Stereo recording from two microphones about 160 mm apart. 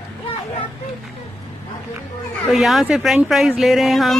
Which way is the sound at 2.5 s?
Centre (ahead or behind).